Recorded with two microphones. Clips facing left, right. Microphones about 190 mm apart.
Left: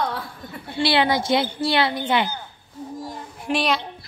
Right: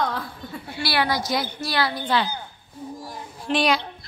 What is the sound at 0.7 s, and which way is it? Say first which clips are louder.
A woman's voice: left 5 dB; 25° left (ahead or behind).